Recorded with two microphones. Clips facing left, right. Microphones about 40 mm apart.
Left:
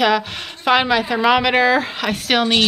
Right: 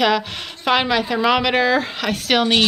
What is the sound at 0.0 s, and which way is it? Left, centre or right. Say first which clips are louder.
A woman's voice: left 1 dB; centre.